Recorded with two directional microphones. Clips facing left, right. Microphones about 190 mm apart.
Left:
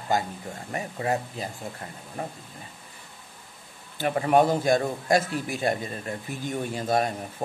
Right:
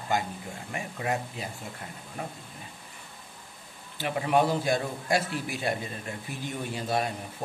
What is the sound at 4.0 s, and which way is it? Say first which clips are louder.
A man's voice: left 4 dB; 45° left (ahead or behind).